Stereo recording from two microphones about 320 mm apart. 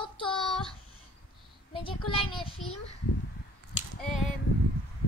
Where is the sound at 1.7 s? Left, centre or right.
Centre.